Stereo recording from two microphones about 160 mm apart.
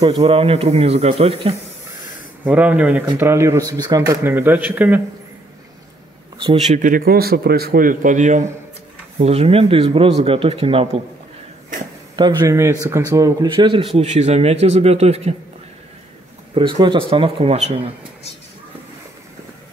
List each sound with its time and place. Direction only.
0.2 s speech: 40° right (ahead or behind)
2.4 s speech: 10° right (ahead or behind)
6.4 s speech: 40° right (ahead or behind)
12.2 s speech: 25° right (ahead or behind)
13.9 s speech: 45° right (ahead or behind)
16.5 s speech: 30° right (ahead or behind)